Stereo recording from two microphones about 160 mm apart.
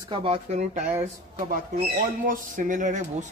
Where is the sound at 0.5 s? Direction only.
50° right (ahead or behind).